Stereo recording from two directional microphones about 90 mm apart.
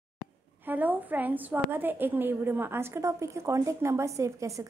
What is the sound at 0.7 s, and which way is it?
A woman's voice, 20° right (ahead or behind).